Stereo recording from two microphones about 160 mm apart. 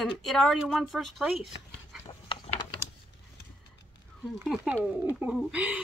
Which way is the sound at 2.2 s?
40° left (ahead or behind).